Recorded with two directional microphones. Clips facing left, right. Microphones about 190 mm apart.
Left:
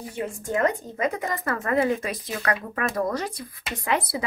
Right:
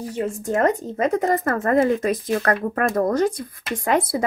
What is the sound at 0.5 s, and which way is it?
Speech, 45° right (ahead or behind).